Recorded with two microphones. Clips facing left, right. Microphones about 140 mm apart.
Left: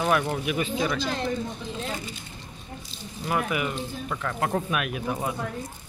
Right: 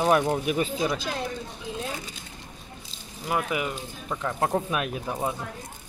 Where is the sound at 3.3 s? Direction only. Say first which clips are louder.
Left 1 dB; 20° right (ahead or behind).